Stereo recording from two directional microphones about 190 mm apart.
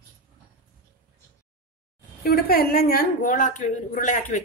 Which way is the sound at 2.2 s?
55° left (ahead or behind).